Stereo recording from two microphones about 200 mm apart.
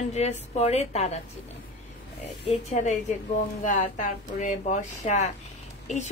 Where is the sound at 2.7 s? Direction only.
35° left (ahead or behind).